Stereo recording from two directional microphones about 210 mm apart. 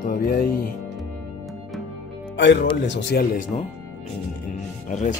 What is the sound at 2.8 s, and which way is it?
Speech, 55° left (ahead or behind).